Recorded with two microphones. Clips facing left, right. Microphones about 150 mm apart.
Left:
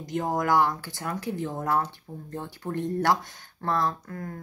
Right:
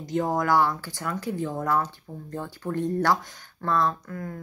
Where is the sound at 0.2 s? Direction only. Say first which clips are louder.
Right 1 dB; 20° left (ahead or behind).